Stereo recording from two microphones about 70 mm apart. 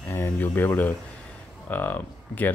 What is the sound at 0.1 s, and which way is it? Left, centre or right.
Speech, left.